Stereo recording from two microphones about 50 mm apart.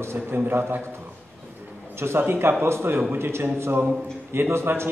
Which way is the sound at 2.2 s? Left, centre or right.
Right.